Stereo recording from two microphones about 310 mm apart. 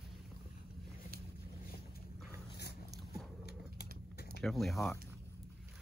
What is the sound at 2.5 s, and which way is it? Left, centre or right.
Dog, left.